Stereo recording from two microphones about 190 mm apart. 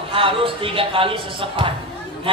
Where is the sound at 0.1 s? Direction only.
30° right (ahead or behind).